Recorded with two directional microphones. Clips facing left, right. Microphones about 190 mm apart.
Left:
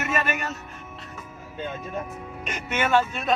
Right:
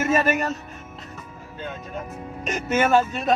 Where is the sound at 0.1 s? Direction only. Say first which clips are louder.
Right 6 dB; 40° right (ahead or behind).